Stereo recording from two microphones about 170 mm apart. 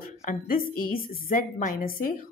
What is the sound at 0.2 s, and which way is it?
A woman's voice, 55° left (ahead or behind).